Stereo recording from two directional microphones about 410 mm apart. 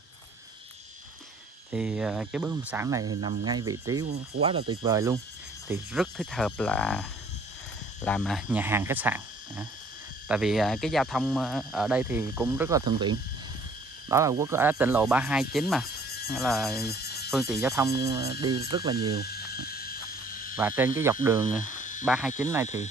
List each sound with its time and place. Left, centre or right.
1.7 s speech: centre
16.8 s neigh: left
17.3 s speech: centre
19.2 s frog: left
20.5 s speech: centre
21.6 s a sound: centre
22.0 s speech: centre